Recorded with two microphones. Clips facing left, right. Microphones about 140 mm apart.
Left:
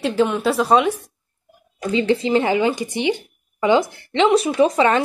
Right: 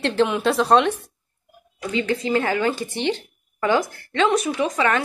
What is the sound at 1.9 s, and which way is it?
Speech, 25° left (ahead or behind).